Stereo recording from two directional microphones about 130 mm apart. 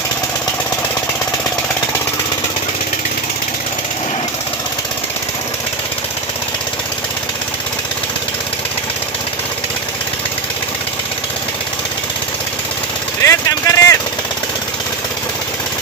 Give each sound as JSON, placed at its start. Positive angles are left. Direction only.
{"t": 13.2, "sound": "vehicle", "side_deg": 25}